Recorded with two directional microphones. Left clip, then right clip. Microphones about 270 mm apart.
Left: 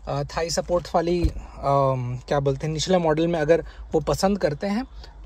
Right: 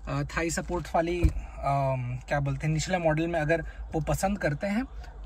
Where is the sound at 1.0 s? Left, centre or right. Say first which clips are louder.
Left 6 dB; left.